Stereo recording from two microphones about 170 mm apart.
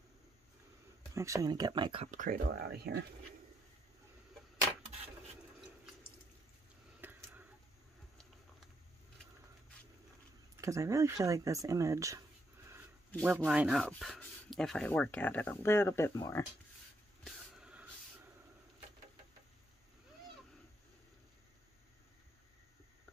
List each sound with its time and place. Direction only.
1.1 s speech: 20° right (ahead or behind)
2.0 s speech: 50° right (ahead or behind); by 3.1 s 70° right (ahead or behind)
7.0 s a sound: 10° right (ahead or behind)
10.6 s speech: 20° right (ahead or behind)
13.2 s speech: 5° right (ahead or behind); by 16.4 s 15° left (ahead or behind)
17.2 s vehicle: 5° right (ahead or behind)